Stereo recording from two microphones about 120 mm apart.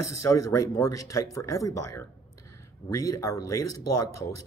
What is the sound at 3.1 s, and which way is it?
Speech, 25° left (ahead or behind).